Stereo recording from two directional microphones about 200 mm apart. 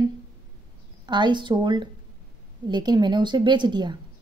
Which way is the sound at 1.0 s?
20° right (ahead or behind).